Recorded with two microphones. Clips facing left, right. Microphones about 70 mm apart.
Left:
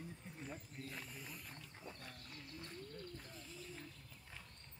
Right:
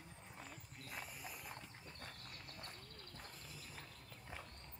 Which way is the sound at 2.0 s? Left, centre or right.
Right.